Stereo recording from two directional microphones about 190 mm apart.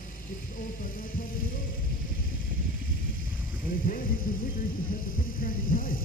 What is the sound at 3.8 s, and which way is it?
Speech, 50° left (ahead or behind).